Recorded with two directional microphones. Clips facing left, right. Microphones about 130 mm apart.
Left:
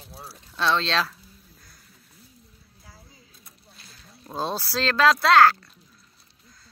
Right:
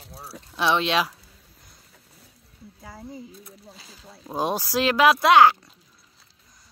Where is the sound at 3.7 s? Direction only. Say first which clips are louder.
Right 5 dB; 90° right.